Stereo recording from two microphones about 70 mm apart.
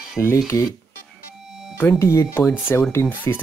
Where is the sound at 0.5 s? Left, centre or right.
Left.